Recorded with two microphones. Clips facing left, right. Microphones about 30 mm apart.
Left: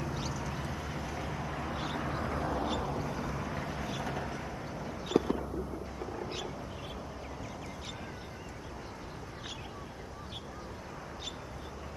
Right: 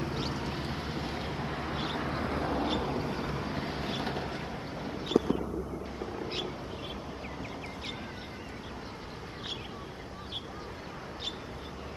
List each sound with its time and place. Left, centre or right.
0.0 s vehicle: right